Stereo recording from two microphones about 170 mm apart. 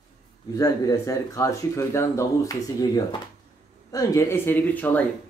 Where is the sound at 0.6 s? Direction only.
20° left (ahead or behind).